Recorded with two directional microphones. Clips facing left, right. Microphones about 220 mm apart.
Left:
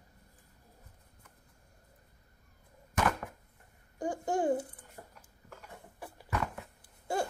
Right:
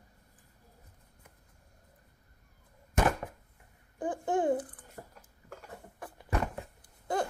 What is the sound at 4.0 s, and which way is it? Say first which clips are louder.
Babbling: right 1 dB; 10° left (ahead or behind).